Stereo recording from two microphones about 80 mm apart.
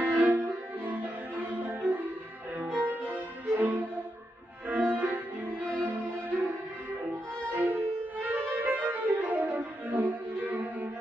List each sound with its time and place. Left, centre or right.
0.0 s music: right
5.8 s violin: centre
8.2 s music: centre